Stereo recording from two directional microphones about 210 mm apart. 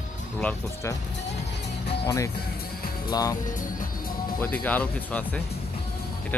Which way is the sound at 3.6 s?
40° left (ahead or behind).